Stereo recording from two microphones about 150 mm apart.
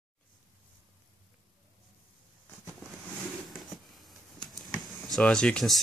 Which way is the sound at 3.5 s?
Centre (ahead or behind).